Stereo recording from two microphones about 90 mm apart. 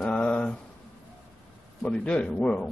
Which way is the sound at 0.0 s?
10° left (ahead or behind).